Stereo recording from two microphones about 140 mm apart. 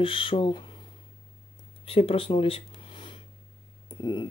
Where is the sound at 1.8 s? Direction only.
40° left (ahead or behind).